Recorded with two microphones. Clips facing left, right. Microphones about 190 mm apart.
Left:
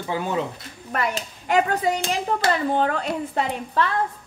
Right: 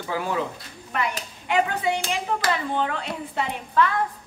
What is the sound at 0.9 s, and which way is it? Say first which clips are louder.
Speech: left 2 dB; 45° left (ahead or behind).